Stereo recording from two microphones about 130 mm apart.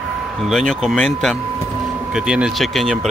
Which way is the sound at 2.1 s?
5° right (ahead or behind).